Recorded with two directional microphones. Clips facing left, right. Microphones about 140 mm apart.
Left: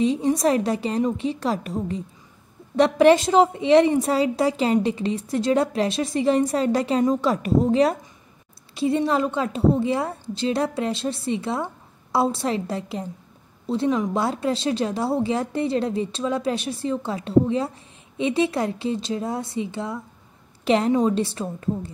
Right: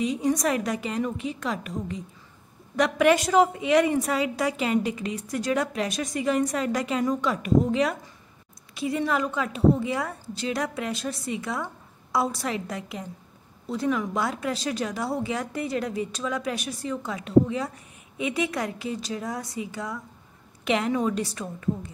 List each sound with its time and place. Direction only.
0.0 s a woman's voice: 30° left (ahead or behind)